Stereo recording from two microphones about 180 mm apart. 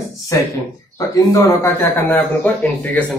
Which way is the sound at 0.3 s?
15° left (ahead or behind).